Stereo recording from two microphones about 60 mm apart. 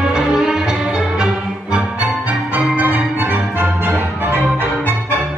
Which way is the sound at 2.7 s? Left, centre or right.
Right.